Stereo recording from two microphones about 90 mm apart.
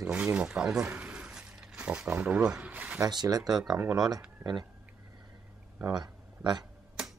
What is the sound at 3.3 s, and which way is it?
Speech, 50° right (ahead or behind).